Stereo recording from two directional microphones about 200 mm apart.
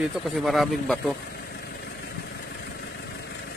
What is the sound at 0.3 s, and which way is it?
Speech, centre (ahead or behind).